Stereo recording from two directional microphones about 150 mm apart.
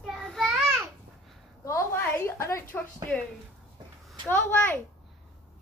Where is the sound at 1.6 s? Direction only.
20° left (ahead or behind).